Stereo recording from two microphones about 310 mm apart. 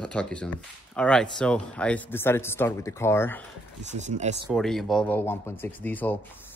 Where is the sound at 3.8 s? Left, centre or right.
Right.